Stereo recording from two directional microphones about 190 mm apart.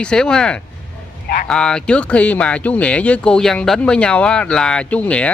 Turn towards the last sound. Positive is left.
turn(degrees=5)  # may be behind; listen again after turning